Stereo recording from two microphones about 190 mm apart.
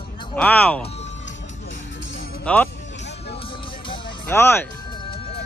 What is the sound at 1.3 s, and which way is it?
Music, 75° left (ahead or behind).